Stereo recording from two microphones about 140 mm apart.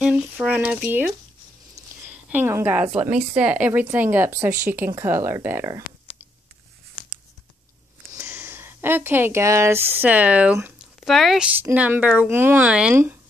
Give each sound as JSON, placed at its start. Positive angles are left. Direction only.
{"t": 0.0, "sound": "speech", "side_deg": -10}
{"t": 8.3, "sound": "speech", "side_deg": -10}